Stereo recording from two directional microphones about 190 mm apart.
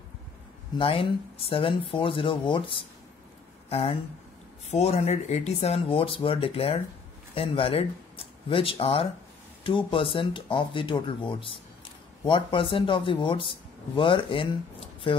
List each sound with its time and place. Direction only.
0.7 s speech: 30° left (ahead or behind)